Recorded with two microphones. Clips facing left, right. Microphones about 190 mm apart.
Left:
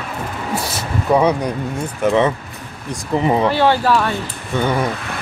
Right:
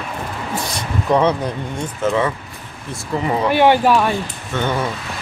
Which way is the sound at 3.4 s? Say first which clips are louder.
Right 2 dB; 15° right (ahead or behind).